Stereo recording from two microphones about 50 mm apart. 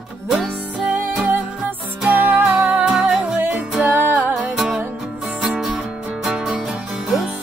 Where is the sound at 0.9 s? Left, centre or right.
Right; by 3.3 s centre.